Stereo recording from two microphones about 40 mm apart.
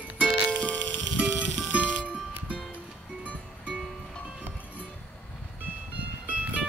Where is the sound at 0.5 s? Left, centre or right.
Left.